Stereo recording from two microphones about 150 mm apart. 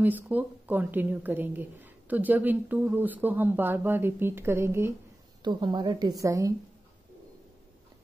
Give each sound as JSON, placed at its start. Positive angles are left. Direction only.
{"t": 0.0, "sound": "a woman's voice", "side_deg": -10}
{"t": 5.4, "sound": "a woman's voice", "side_deg": -30}